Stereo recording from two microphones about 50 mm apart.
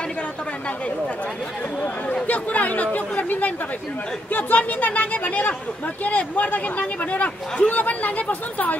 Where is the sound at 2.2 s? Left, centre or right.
Left.